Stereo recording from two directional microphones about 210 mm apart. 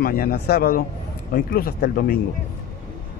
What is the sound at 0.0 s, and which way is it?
Speech, 45° left (ahead or behind).